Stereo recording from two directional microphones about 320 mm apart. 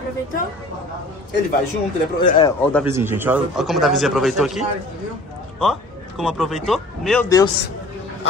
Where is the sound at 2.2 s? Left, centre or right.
Centre.